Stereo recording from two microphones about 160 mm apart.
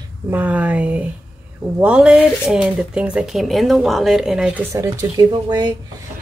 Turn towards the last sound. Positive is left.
turn(degrees=-25)  # may be behind; listen again after turning